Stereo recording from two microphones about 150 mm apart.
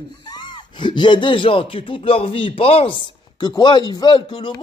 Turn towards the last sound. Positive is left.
turn(degrees=30)  # may be behind; listen again after turning